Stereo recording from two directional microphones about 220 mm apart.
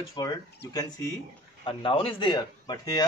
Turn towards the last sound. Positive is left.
turn(degrees=15)  # may be behind; listen again after turning